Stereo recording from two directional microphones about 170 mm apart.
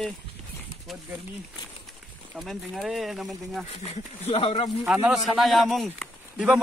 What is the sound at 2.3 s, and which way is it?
A man's voice, centre (ahead or behind).